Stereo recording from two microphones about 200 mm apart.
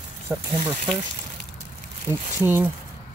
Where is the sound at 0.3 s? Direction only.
10° right (ahead or behind).